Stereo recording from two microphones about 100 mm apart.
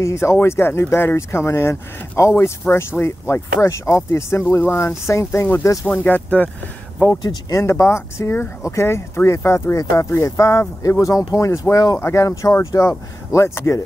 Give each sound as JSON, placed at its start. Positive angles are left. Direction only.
{"t": 0.0, "sound": "speech", "side_deg": 30}
{"t": 5.9, "sound": "speech", "side_deg": 15}